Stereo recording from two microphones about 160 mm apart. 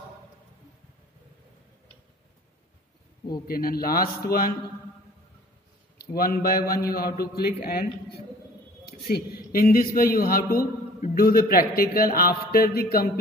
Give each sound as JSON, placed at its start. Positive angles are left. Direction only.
{"t": 3.4, "sound": "a man's voice", "side_deg": 65}
{"t": 6.1, "sound": "a man's voice", "side_deg": 65}